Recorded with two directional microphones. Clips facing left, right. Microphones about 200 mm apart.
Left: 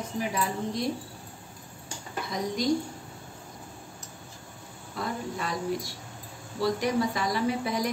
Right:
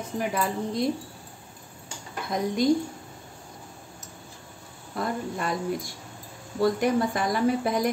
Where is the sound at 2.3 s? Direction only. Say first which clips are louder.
Right 5 dB; 55° right (ahead or behind).